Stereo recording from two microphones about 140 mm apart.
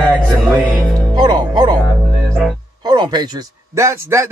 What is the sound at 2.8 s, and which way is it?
Music, 30° right (ahead or behind).